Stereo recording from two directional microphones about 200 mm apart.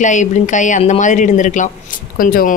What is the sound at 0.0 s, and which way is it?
A woman's voice, 35° left (ahead or behind).